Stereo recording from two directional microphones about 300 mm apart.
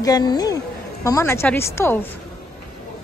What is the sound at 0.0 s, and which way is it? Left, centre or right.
A woman's voice, centre.